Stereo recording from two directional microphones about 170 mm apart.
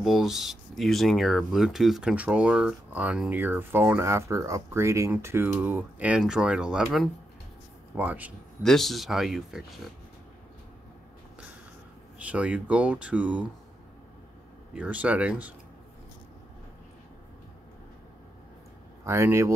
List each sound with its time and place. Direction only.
0.0 s speech: centre (ahead or behind)
8.6 s speech: centre (ahead or behind)
12.2 s speech: 10° right (ahead or behind)
14.7 s speech: 10° right (ahead or behind)
19.0 s speech: 15° right (ahead or behind)